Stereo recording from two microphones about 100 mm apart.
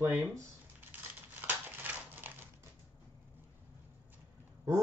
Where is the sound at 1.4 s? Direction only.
20° right (ahead or behind).